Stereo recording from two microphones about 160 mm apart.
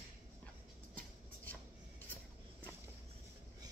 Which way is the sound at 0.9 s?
10° left (ahead or behind).